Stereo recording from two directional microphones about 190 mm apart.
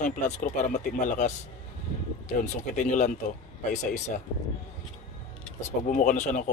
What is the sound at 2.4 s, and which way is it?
Speech, 40° left (ahead or behind).